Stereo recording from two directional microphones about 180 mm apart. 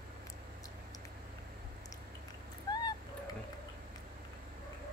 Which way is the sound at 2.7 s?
20° left (ahead or behind).